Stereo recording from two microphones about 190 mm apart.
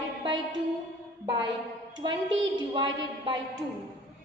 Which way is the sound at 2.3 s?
75° right (ahead or behind).